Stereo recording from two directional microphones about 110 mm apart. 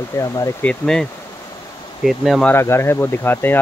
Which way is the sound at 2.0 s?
5° right (ahead or behind).